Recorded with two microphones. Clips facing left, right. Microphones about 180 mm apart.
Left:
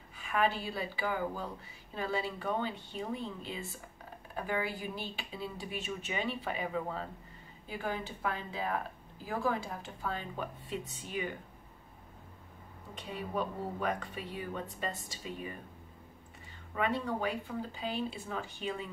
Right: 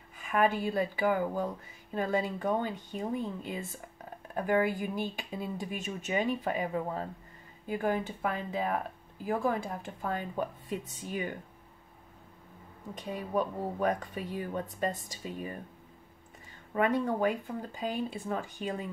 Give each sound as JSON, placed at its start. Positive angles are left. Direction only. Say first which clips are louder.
{"t": 0.3, "sound": "speech", "louder": "right 4 dB", "side_deg": -50}
{"t": 12.9, "sound": "speech", "louder": "right 5 dB", "side_deg": -45}
{"t": 16.7, "sound": "speech", "louder": "right 5 dB", "side_deg": -45}